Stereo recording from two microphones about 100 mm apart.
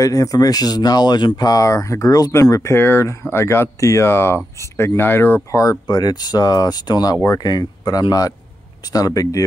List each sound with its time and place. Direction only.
0.0 s speech: 35° left (ahead or behind)